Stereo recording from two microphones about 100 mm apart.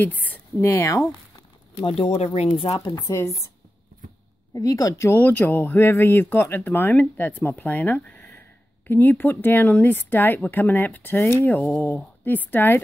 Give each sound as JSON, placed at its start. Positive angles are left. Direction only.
{"t": 0.0, "sound": "a sound", "side_deg": 15}
{"t": 0.7, "sound": "speech", "side_deg": 30}
{"t": 1.9, "sound": "speech", "side_deg": 90}
{"t": 2.8, "sound": "speech", "side_deg": 40}
{"t": 4.6, "sound": "speech", "side_deg": 35}